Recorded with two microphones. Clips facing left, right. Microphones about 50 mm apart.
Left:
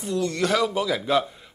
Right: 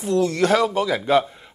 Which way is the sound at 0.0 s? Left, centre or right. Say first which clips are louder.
Right 5 dB; centre.